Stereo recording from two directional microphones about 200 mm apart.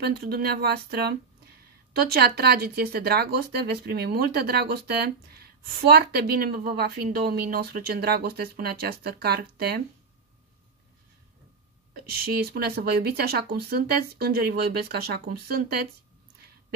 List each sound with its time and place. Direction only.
0.0 s speech: 50° right (ahead or behind)
11.9 s speech: 50° right (ahead or behind)